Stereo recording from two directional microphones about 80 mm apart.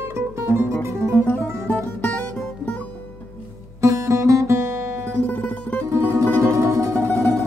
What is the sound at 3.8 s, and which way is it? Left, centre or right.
Music, right.